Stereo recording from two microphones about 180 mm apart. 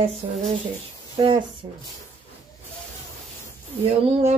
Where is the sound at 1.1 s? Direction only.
30° right (ahead or behind).